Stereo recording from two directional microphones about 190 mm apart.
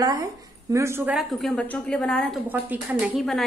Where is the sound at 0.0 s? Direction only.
20° right (ahead or behind).